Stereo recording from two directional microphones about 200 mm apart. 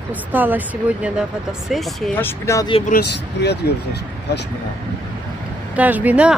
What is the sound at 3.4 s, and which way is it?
Speech, 60° left (ahead or behind).